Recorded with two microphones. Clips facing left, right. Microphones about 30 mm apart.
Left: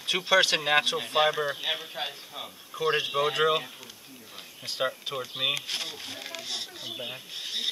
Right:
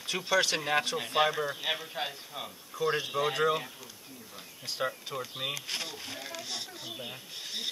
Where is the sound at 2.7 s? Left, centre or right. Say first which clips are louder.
Left 4 dB; left.